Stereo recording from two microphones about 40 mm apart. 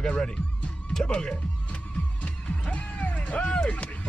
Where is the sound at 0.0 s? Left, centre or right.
Left.